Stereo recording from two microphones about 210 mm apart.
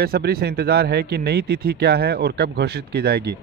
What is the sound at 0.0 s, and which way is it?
Speech, 45° right (ahead or behind).